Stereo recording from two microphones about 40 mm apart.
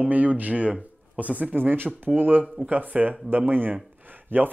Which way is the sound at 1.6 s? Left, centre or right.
Right.